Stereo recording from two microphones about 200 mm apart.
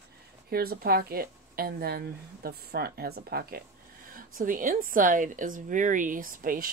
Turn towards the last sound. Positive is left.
turn(degrees=-45)  # may be behind; listen again after turning